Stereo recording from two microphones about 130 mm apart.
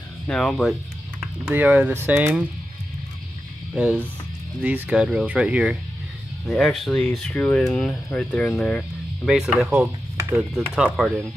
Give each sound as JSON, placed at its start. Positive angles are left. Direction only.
{"t": 0.3, "sound": "speech", "side_deg": 5}
{"t": 1.5, "sound": "speech", "side_deg": -15}
{"t": 3.7, "sound": "speech", "side_deg": -10}
{"t": 9.3, "sound": "speech", "side_deg": -5}